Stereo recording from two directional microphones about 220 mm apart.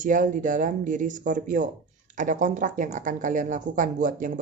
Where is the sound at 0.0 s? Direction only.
35° right (ahead or behind).